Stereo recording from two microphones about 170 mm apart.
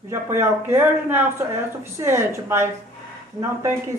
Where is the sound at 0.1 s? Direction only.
15° right (ahead or behind).